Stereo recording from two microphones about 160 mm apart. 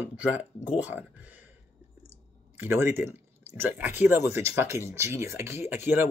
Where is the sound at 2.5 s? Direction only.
15° right (ahead or behind).